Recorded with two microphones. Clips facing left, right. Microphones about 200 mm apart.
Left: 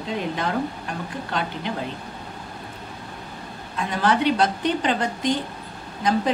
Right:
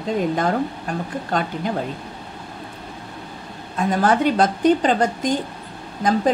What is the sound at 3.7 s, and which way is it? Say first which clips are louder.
A woman's voice: right 4 dB; 45° right (ahead or behind).